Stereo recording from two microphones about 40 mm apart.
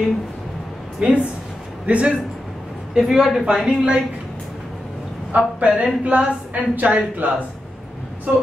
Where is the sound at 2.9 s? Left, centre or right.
Centre.